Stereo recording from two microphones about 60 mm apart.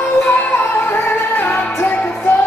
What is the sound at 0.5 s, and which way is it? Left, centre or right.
Music, left.